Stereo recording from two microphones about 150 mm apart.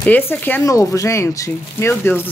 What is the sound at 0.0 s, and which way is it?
Speech, 10° left (ahead or behind).